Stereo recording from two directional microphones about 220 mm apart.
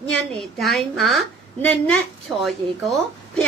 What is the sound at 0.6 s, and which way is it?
A woman's voice, centre (ahead or behind).